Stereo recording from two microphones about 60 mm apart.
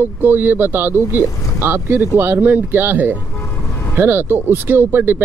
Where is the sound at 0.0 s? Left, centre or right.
Right.